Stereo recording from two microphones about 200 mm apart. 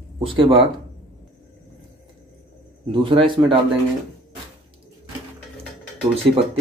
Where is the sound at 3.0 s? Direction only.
25° right (ahead or behind).